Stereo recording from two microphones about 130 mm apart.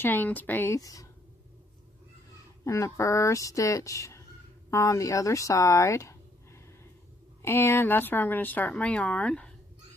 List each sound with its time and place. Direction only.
0.0 s speech: 15° left (ahead or behind)
2.6 s speech: 25° left (ahead or behind)
7.4 s speech: 20° left (ahead or behind)